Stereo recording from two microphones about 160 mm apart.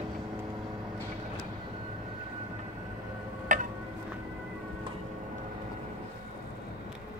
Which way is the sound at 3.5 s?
55° right (ahead or behind).